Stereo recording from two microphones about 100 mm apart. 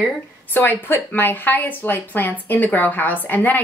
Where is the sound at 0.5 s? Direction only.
20° left (ahead or behind).